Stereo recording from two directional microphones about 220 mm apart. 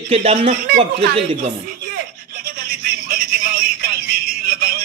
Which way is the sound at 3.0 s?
45° right (ahead or behind).